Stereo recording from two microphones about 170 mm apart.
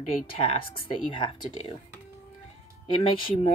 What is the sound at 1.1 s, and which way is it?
Speech, 30° left (ahead or behind).